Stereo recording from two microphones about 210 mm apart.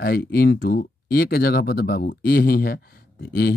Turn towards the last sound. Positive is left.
turn(degrees=45)  # may be behind; listen again after turning